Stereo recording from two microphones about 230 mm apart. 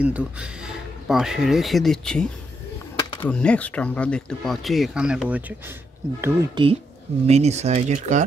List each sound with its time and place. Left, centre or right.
0.0 s speech: centre
6.2 s speech: right